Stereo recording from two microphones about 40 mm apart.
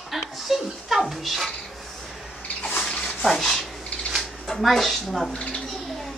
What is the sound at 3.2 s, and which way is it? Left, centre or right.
A woman's voice, centre.